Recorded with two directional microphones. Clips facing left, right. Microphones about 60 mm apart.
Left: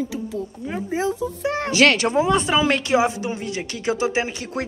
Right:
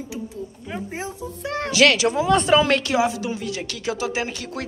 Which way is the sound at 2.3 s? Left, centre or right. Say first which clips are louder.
Right 2 dB; centre.